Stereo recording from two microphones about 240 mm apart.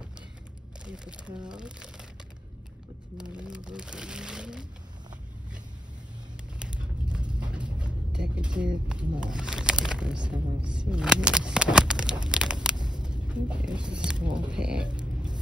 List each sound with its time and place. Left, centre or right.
0.8 s speech: centre
3.2 s speech: centre
6.6 s speech: centre
13.0 s a sound: centre
13.9 s speech: centre